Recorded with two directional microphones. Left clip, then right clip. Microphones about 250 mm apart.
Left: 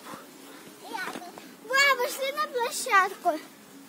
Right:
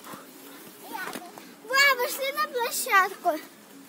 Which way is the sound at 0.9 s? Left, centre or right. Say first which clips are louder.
Left 1 dB; left.